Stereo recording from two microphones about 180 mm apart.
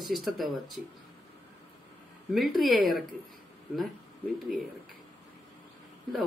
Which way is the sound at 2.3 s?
Centre (ahead or behind).